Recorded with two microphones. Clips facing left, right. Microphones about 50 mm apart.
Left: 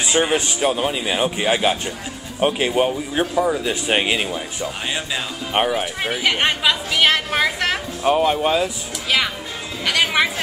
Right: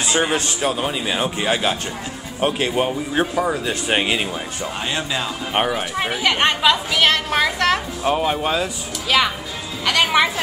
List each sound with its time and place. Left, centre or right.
0.0 s speech: centre